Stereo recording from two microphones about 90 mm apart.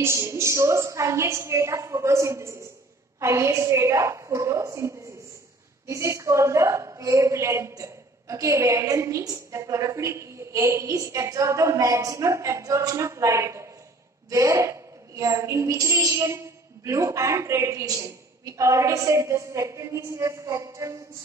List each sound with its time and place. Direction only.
0.0 s a woman's voice: 30° right (ahead or behind)